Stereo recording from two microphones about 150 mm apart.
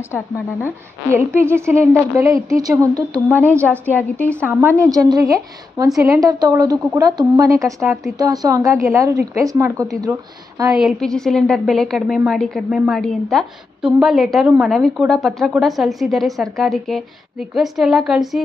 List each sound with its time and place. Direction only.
0.7 s a woman's voice: 15° right (ahead or behind)
3.9 s a woman's voice: 10° left (ahead or behind)
4.5 s a woman's voice: 15° right (ahead or behind)
10.7 s a woman's voice: centre (ahead or behind)